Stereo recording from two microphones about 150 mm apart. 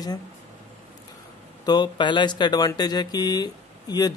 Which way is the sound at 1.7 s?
30° left (ahead or behind).